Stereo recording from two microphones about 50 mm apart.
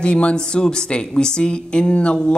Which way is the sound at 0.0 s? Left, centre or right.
Left.